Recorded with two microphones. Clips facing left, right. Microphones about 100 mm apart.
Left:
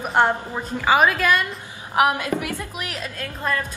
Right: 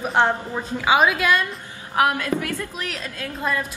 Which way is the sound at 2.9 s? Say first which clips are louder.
Even; centre (ahead or behind).